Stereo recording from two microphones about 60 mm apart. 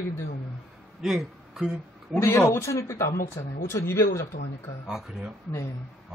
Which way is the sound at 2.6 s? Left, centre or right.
Left.